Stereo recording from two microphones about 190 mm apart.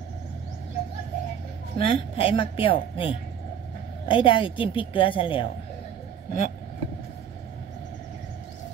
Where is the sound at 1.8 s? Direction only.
30° left (ahead or behind).